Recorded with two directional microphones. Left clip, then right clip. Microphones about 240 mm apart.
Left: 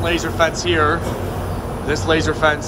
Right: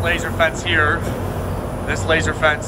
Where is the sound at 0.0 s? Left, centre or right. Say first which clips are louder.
Even; centre.